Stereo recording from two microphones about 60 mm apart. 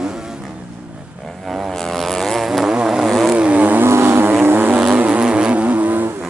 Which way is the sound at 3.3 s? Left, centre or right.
Right.